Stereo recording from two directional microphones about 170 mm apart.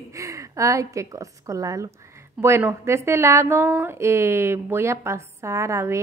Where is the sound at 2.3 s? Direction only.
15° right (ahead or behind).